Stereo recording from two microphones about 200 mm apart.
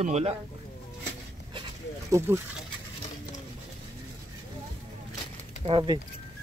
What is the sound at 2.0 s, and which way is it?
Speech, 15° right (ahead or behind).